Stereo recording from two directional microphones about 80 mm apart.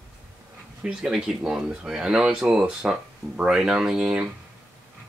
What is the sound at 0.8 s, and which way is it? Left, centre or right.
Speech, centre.